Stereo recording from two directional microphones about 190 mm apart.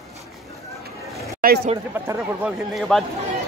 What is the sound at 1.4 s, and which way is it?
Speech, 45° right (ahead or behind).